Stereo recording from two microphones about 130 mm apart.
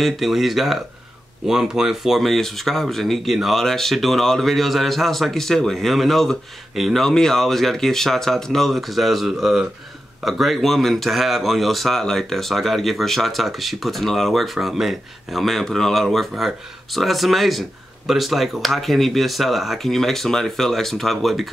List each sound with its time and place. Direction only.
0.0 s speech: centre (ahead or behind)